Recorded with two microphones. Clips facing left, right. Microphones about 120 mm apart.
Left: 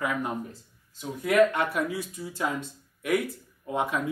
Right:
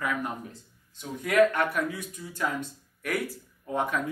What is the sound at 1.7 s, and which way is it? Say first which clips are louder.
Speech: left 1 dB; 30° left (ahead or behind).